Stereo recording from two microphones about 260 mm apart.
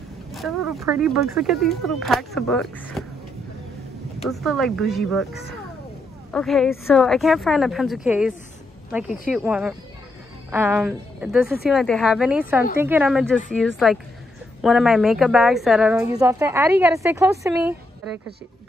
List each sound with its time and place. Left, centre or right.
0.3 s a woman's voice: centre
4.3 s a woman's voice: centre
6.3 s a woman's voice: centre